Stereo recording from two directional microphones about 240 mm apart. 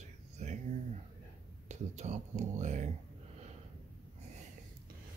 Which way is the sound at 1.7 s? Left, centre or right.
Right.